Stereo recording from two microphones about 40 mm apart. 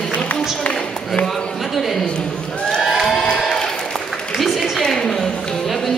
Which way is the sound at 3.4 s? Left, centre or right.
Centre.